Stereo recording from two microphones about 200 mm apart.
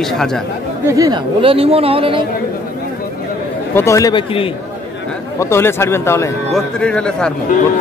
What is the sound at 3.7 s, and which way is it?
Speech, 15° left (ahead or behind).